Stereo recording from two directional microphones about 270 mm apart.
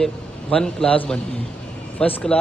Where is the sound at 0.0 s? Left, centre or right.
Centre.